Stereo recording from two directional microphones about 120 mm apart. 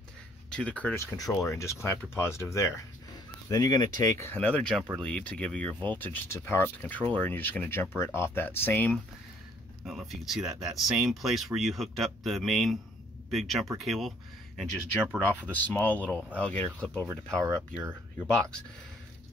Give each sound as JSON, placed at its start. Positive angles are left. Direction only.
{"t": 0.5, "sound": "speech", "side_deg": 10}
{"t": 0.9, "sound": "speech", "side_deg": 30}
{"t": 4.4, "sound": "speech", "side_deg": 10}
{"t": 9.8, "sound": "speech", "side_deg": 0}
{"t": 15.5, "sound": "speech", "side_deg": 15}
{"t": 17.0, "sound": "speech", "side_deg": -25}